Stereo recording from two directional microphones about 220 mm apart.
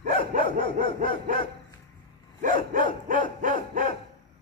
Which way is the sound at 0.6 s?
25° left (ahead or behind).